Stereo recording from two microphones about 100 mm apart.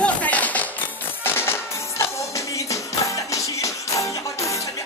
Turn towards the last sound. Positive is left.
turn(degrees=30)  # may be behind; listen again after turning